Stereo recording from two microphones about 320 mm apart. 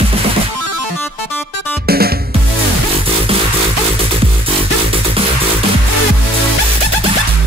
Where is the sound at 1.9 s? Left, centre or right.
Right.